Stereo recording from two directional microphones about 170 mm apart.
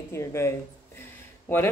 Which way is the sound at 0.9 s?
15° left (ahead or behind).